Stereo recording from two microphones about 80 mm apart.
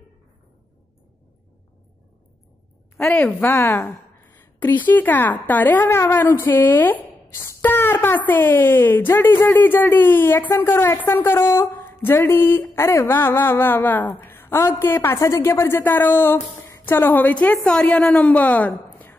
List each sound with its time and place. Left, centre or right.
3.1 s a woman's voice: centre
7.6 s a sound: left
8.3 s a woman's voice: left
15.8 s a woman's voice: left